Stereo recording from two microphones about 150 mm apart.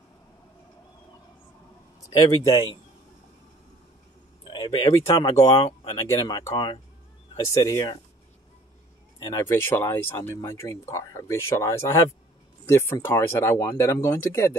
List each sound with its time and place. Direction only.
2.0 s a man's voice: 25° left (ahead or behind)
2.4 s a man's voice: 35° left (ahead or behind)
4.5 s a sound: 30° left (ahead or behind)
5.2 s speech: 25° left (ahead or behind)
9.3 s speech: 15° left (ahead or behind)